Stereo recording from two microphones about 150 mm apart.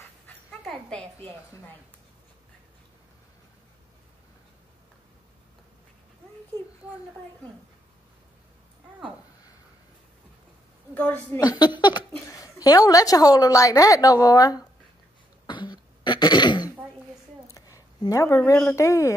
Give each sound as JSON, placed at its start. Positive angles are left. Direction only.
{"t": 0.5, "sound": "dog", "side_deg": 5}
{"t": 11.3, "sound": "a woman's voice", "side_deg": 25}
{"t": 15.4, "sound": "throat clearing", "side_deg": 30}
{"t": 17.5, "sound": "a sound", "side_deg": 20}
{"t": 18.7, "sound": "a woman's voice", "side_deg": 20}